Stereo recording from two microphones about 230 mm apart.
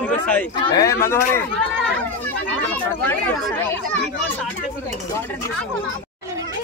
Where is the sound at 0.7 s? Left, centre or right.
Centre.